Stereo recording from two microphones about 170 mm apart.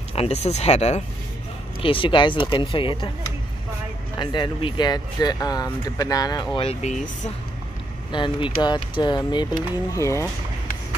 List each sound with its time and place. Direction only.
0.1 s speech: 35° left (ahead or behind)
4.2 s speech: 25° left (ahead or behind); by 7.1 s 45° left (ahead or behind)
8.1 s speech: 30° left (ahead or behind)